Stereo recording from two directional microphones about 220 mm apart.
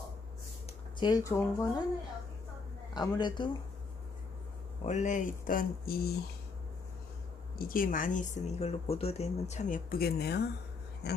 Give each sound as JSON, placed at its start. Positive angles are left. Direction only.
{"t": 0.9, "sound": "speech", "side_deg": 15}
{"t": 2.9, "sound": "a man's voice", "side_deg": 20}
{"t": 4.8, "sound": "speech", "side_deg": 35}
{"t": 7.5, "sound": "speech", "side_deg": 40}